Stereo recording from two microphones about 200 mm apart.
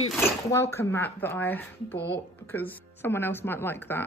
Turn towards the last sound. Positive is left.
turn(degrees=10)  # may be behind; listen again after turning